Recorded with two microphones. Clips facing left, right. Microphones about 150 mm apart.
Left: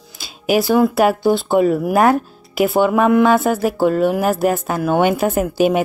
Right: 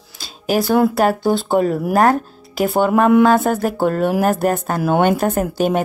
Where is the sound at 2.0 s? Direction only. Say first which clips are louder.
Left 1 dB; 40° right (ahead or behind).